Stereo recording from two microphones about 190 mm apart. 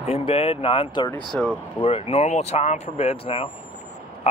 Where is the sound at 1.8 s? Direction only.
30° left (ahead or behind).